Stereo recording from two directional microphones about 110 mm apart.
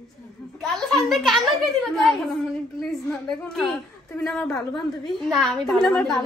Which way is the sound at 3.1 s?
5° left (ahead or behind).